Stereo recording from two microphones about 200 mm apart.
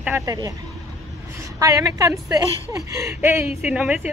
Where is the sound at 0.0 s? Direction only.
15° right (ahead or behind).